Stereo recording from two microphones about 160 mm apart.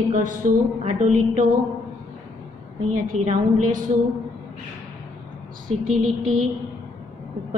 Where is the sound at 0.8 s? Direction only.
45° right (ahead or behind).